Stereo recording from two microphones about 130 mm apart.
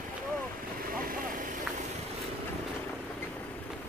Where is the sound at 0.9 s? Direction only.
90° right.